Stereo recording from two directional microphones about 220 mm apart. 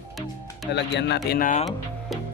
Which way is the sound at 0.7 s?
50° left (ahead or behind).